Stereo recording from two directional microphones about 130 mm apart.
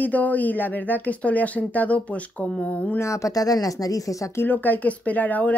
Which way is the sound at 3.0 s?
25° left (ahead or behind).